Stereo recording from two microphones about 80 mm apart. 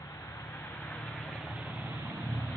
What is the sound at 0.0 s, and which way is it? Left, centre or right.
Vehicle, left.